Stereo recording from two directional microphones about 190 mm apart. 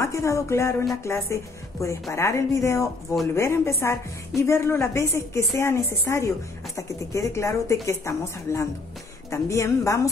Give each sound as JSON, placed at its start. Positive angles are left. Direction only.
{"t": 0.0, "sound": "a woman's voice", "side_deg": 15}